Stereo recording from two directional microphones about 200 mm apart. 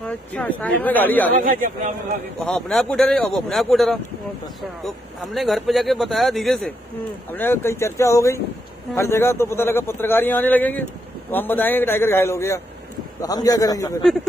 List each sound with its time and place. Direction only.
0.0 s a man's voice: 5° left (ahead or behind)
2.4 s a man's voice: 5° left (ahead or behind)